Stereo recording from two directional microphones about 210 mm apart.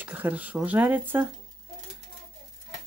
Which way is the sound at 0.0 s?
10° right (ahead or behind).